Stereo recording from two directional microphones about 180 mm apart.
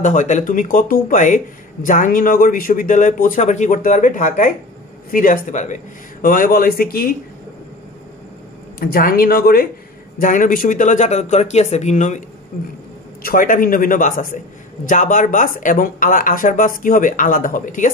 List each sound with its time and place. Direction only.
0.0 s speech: 45° left (ahead or behind)
8.7 s speech: 55° left (ahead or behind)
10.1 s speech: 45° left (ahead or behind)
13.2 s speech: 50° left (ahead or behind)